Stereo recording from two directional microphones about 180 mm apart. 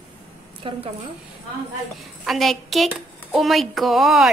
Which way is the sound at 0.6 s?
30° right (ahead or behind).